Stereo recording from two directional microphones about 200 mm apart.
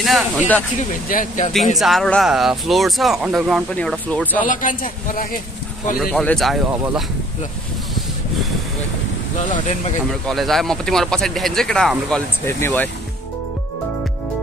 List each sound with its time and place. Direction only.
0.0 s speech: centre (ahead or behind)
0.7 s speech: 40° left (ahead or behind)
1.5 s speech: centre (ahead or behind)
4.4 s speech: 40° left (ahead or behind)
6.1 s speech: 5° left (ahead or behind)
10.2 s speech: centre (ahead or behind)
12.4 s speech: 15° left (ahead or behind)